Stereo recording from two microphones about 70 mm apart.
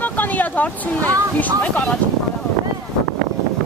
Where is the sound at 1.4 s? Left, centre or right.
Left.